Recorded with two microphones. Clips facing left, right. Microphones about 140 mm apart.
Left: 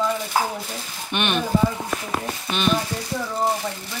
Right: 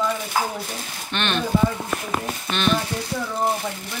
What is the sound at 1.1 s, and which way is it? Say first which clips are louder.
Speech: left 1 dB; 15° left (ahead or behind).